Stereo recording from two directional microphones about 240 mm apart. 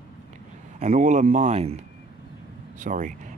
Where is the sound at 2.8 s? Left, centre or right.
Right.